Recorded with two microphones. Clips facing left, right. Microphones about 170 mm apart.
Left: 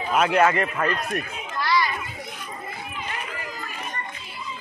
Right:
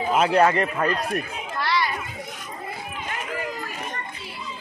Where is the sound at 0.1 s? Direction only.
30° right (ahead or behind).